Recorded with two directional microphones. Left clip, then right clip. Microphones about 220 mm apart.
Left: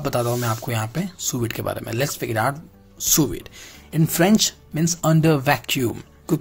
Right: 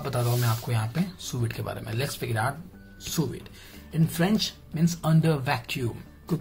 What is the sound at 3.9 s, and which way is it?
Speech, 45° left (ahead or behind).